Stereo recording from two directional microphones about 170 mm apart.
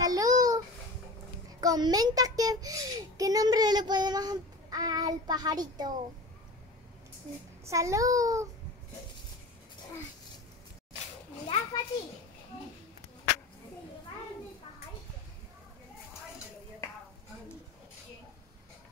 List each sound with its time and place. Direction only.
0.0 s a sound: 20° right (ahead or behind)
1.6 s a child's voice: 20° right (ahead or behind)
7.6 s a child's voice: 20° right (ahead or behind)
11.4 s a child's voice: 30° left (ahead or behind)